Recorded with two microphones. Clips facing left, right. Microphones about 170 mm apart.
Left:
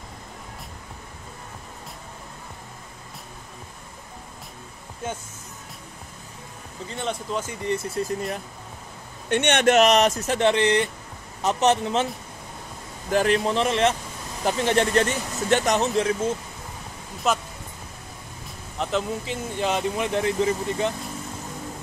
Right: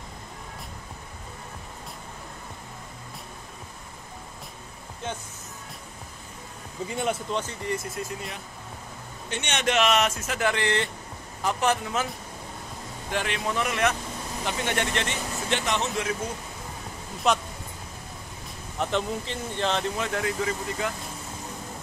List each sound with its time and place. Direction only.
6.9 s speech: 5° right (ahead or behind)
7.6 s speech: 30° left (ahead or behind)
9.3 s speech: 60° left (ahead or behind); by 12.1 s 30° left (ahead or behind)
13.1 s speech: 40° left (ahead or behind)
17.3 s speech: centre (ahead or behind)
18.8 s speech: centre (ahead or behind); by 20.9 s 25° left (ahead or behind)